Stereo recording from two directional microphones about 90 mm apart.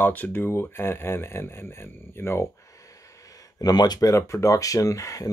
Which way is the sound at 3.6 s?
50° left (ahead or behind).